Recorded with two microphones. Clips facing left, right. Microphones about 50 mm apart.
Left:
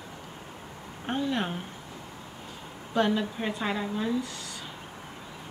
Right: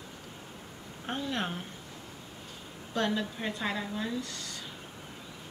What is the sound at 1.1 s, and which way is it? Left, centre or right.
Speech, centre.